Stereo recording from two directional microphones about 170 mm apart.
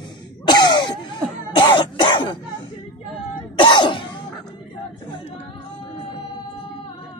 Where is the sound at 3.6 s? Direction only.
25° left (ahead or behind).